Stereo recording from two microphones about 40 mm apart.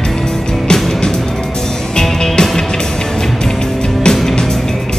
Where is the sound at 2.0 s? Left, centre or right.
Centre.